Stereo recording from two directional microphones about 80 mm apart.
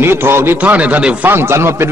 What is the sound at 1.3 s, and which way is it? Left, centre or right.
Speech, right.